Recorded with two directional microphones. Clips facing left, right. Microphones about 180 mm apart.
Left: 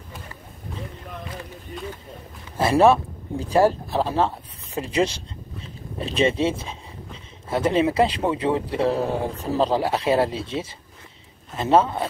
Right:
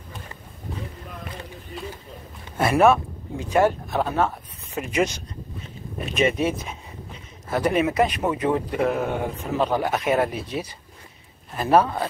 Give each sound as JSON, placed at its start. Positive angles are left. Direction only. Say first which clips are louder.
{"t": 2.5, "sound": "a man's voice", "louder": "left 1 dB", "side_deg": 30}